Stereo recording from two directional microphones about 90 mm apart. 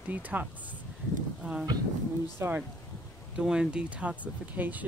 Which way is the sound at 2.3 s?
25° right (ahead or behind).